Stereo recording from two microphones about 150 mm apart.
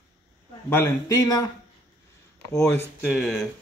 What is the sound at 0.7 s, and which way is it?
Speech, 15° left (ahead or behind).